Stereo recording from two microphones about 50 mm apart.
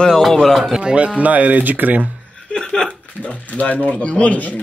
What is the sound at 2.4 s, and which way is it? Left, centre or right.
Chuckle, centre.